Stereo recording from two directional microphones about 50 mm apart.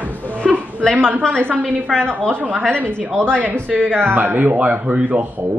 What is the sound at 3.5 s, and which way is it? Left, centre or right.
Speech, centre.